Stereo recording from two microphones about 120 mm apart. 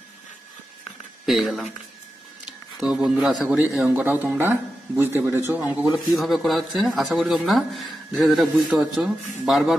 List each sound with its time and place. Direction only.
1.2 s speech: centre (ahead or behind)
2.8 s speech: 5° right (ahead or behind)
5.9 s speech: centre (ahead or behind)